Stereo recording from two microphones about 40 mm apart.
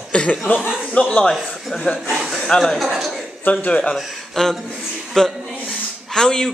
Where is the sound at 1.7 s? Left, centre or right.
Left.